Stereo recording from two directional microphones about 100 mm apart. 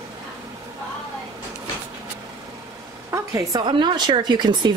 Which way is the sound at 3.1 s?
35° right (ahead or behind).